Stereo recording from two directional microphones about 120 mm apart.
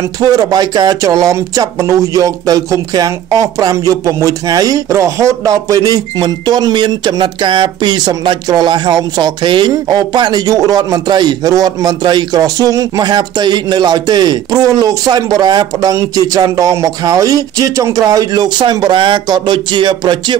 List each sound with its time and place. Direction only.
0.2 s speech: 35° right (ahead or behind)